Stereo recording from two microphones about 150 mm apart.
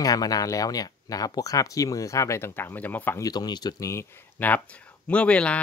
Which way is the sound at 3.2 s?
30° left (ahead or behind).